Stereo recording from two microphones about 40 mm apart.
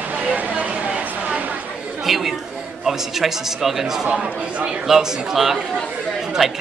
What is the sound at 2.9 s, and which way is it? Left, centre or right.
A man's voice, centre.